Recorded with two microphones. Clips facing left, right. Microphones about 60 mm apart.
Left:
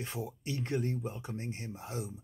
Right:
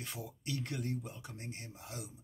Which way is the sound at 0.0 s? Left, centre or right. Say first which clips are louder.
Left 5 dB; left.